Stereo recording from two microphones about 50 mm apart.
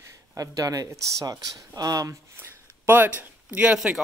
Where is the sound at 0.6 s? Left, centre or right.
Right.